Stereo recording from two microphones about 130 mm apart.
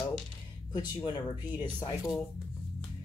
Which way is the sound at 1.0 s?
35° left (ahead or behind).